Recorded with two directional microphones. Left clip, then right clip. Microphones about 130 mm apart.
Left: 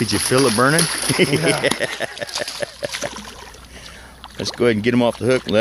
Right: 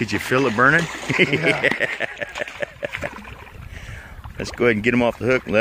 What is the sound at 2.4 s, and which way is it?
Boat, 5° left (ahead or behind).